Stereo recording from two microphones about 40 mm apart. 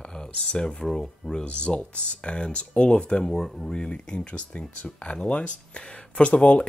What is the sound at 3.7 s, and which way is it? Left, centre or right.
Speech, left.